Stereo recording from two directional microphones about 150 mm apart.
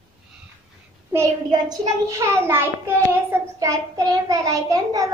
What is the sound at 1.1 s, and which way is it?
A child's voice, 25° right (ahead or behind).